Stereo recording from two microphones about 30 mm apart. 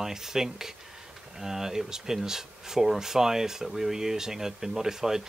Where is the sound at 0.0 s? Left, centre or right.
Centre.